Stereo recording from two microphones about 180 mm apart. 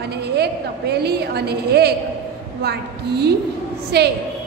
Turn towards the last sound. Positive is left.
turn(degrees=-65)  # may be behind; listen again after turning